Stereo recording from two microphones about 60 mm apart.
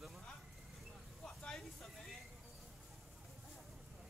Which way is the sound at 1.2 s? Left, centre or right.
Centre.